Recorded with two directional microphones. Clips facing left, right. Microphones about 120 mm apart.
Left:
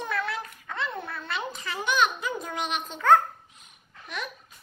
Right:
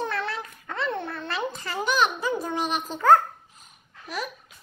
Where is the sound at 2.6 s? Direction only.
40° right (ahead or behind).